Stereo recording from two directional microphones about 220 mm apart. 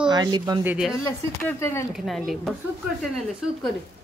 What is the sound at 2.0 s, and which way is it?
A child's voice, centre (ahead or behind).